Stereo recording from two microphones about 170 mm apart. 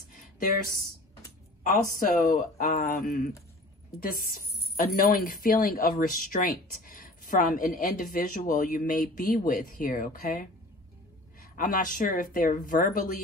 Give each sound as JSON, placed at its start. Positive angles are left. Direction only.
{"t": 1.6, "sound": "speech", "side_deg": 55}
{"t": 2.8, "sound": "a woman's voice", "side_deg": 65}
{"t": 11.5, "sound": "speech", "side_deg": 55}